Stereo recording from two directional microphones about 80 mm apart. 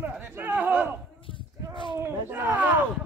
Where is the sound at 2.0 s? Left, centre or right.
Right.